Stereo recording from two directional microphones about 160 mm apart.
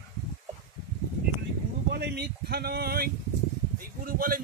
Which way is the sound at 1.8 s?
90° right.